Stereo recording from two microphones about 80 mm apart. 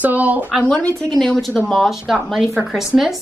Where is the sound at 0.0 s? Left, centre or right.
Right.